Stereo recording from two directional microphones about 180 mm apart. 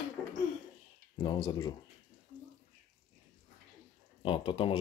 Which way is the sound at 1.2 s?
25° left (ahead or behind).